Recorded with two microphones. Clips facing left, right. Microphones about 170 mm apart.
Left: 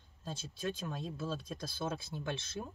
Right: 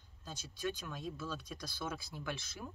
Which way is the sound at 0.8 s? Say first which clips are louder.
Left 3 dB; 30° left (ahead or behind).